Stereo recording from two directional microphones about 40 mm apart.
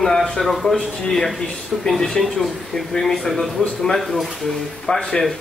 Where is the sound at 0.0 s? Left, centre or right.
Centre.